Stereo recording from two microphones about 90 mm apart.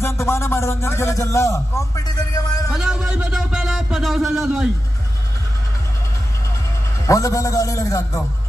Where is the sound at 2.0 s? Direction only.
45° left (ahead or behind).